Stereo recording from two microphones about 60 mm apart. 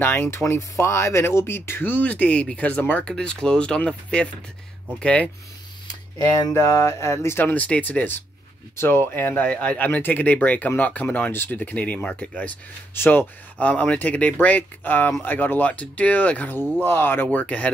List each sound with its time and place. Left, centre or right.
0.0 s speech: left
2.0 s speech: left
3.1 s speech: centre
6.5 s a sound: left
7.4 s speech: left
8.7 s speech: left
12.9 s speech: left
13.6 s speech: left
16.8 s speech: left